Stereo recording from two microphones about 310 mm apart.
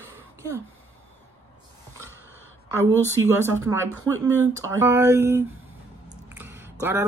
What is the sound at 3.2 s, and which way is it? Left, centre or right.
Speech, centre.